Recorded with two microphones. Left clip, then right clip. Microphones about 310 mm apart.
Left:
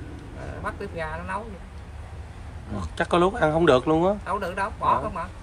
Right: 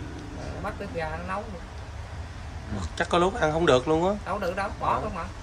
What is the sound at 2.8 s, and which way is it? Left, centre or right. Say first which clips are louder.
Speech: left 2 dB; left.